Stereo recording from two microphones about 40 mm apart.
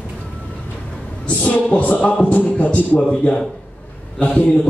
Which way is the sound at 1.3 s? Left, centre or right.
Left.